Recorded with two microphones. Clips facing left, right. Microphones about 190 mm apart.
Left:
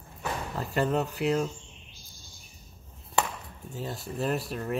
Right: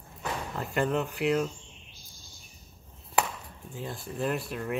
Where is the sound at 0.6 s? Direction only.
35° left (ahead or behind).